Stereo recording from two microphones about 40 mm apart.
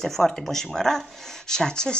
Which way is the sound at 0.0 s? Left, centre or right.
Centre.